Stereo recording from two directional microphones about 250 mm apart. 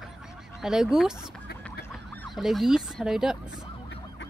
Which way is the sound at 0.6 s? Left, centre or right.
Centre.